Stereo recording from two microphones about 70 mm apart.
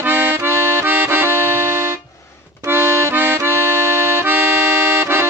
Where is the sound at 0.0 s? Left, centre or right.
Right.